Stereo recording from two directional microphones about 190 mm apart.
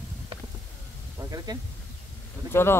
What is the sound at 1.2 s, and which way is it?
Speech, 20° right (ahead or behind).